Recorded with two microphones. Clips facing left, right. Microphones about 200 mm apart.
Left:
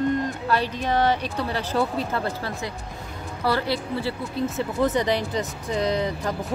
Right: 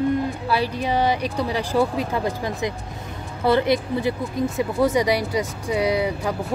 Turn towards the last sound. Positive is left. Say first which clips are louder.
# right 3 dB
turn(degrees=-10)  # may be behind; listen again after turning